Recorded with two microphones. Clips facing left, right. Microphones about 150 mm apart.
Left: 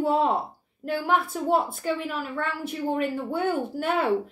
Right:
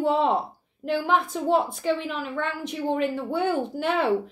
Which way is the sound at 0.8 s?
10° left (ahead or behind).